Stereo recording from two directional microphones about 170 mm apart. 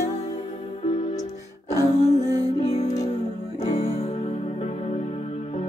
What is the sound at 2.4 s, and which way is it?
Music, 35° left (ahead or behind).